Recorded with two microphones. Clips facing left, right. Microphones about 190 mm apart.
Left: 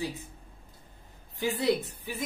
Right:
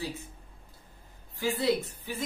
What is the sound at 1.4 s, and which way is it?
Speech, 20° left (ahead or behind).